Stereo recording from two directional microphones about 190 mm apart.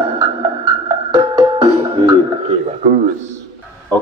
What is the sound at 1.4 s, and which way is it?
Music, 30° right (ahead or behind).